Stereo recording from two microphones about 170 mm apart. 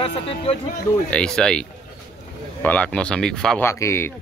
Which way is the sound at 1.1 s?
5° left (ahead or behind).